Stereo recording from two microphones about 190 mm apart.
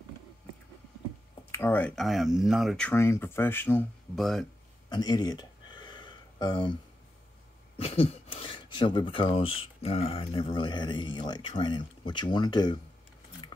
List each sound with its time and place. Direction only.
1.5 s speech: 10° left (ahead or behind)
2.9 s speech: 15° left (ahead or behind)
4.8 s a sound: 20° left (ahead or behind)
7.8 s speech: 30° left (ahead or behind)